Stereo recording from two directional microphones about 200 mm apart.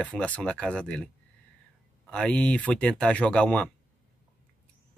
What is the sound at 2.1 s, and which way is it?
Speech, 5° left (ahead or behind).